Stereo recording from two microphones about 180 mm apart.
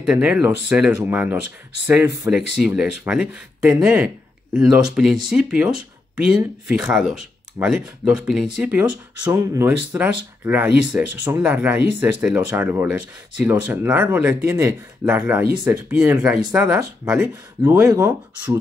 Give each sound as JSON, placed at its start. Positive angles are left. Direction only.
{"t": 0.0, "sound": "speech", "side_deg": -5}
{"t": 17.8, "sound": "speech", "side_deg": -20}